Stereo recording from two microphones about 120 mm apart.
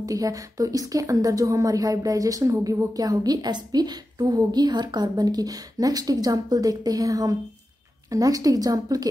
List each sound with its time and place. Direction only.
0.0 s a woman's voice: 30° right (ahead or behind)